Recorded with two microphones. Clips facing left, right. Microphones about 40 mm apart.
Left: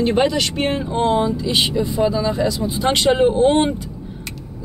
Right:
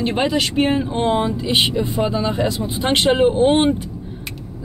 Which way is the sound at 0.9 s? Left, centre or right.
Right.